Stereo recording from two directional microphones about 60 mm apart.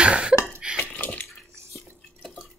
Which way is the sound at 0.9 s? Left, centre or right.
Left.